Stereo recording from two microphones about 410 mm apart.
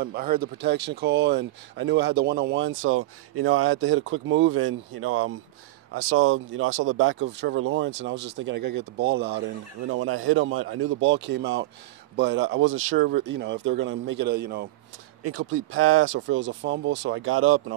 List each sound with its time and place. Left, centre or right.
0.0 s speech: right